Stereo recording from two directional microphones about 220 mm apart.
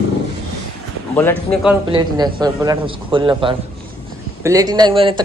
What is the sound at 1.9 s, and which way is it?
A man's voice, 20° right (ahead or behind).